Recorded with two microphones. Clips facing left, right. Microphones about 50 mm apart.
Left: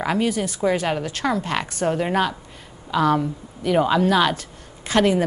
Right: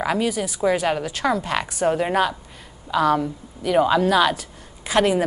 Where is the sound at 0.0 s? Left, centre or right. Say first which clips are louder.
Even; centre.